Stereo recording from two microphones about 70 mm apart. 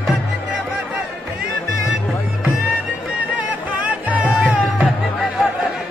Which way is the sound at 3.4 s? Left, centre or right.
Right.